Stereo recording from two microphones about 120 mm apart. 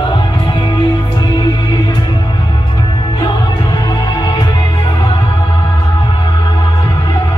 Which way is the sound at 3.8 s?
40° left (ahead or behind).